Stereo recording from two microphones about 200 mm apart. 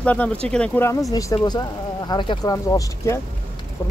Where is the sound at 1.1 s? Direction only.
20° left (ahead or behind).